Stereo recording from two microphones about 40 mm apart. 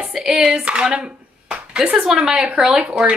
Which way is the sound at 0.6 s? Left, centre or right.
Right.